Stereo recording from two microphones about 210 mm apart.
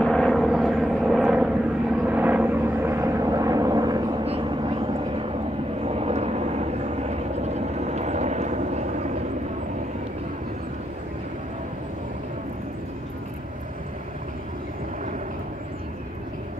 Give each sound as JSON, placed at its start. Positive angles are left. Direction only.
{"t": 0.0, "sound": "vehicle", "side_deg": 0}
{"t": 5.9, "sound": "vehicle", "side_deg": -30}